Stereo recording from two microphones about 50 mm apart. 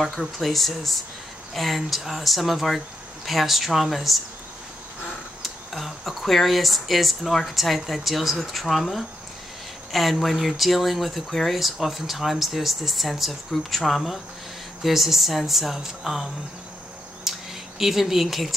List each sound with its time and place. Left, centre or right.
0.0 s speech: centre
5.4 s speech: centre
17.2 s a sound: centre